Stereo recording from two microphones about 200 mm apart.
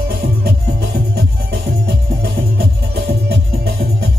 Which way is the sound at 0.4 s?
50° right (ahead or behind).